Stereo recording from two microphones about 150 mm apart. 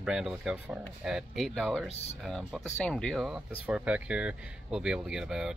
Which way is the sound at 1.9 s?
45° left (ahead or behind).